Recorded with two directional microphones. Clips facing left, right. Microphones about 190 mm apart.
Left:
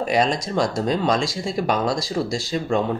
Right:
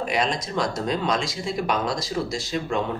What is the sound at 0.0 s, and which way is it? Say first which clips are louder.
Speech: left 4 dB; 40° left (ahead or behind).